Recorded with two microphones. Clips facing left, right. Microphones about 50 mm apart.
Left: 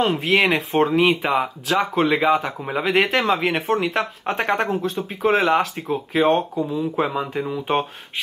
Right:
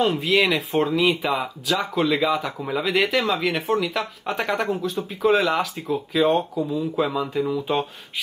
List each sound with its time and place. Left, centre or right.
0.0 s speech: left